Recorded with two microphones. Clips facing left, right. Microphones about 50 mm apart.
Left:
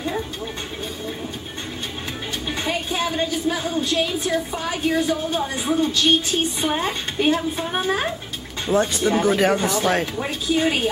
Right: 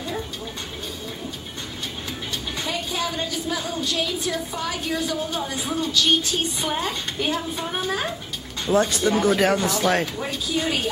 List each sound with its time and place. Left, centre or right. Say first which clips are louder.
2.5 s a woman's voice: left 4 dB; left
8.7 s speech: left 1 dB; centre
10.2 s a woman's voice: left 4 dB; left